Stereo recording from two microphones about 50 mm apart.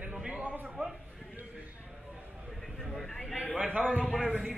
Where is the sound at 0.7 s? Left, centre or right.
Centre.